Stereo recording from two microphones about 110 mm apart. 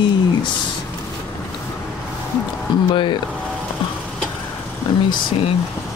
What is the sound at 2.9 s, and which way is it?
Speech, 50° left (ahead or behind).